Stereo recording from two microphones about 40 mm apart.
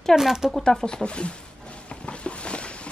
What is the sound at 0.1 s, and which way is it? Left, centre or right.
Speech, centre.